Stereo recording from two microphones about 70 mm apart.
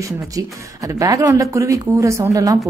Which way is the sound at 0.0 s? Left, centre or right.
Right.